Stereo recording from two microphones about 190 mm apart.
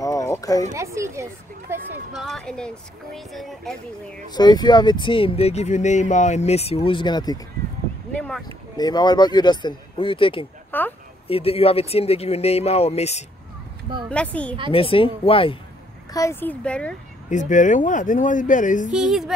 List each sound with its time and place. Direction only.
0.0 s a sound: 15° left (ahead or behind)
0.7 s a sound: 15° right (ahead or behind)
2.1 s speech: centre (ahead or behind)
4.4 s speech: 20° left (ahead or behind)
8.1 s a sound: 5° left (ahead or behind)
8.7 s speech: 20° left (ahead or behind)
10.7 s a sound: 10° left (ahead or behind)
11.2 s speech: 30° left (ahead or behind)
14.0 s speech: 5° left (ahead or behind)
14.7 s speech: 30° left (ahead or behind)
16.1 s speech: 15° left (ahead or behind)
17.3 s speech: 40° left (ahead or behind)
18.9 s speech: 5° right (ahead or behind)